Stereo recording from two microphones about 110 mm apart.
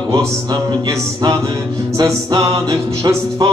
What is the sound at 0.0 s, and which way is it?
Music, 35° right (ahead or behind).